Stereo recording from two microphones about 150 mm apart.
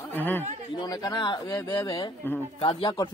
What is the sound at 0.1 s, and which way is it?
Speech, 15° left (ahead or behind).